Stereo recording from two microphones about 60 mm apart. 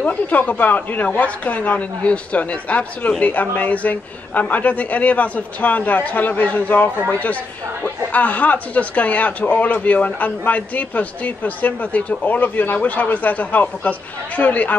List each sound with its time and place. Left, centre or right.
0.0 s speech: left